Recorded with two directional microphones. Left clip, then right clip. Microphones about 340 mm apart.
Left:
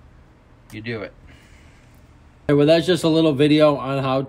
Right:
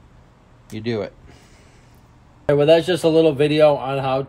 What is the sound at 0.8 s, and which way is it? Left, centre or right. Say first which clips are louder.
Speech: right 5 dB; centre.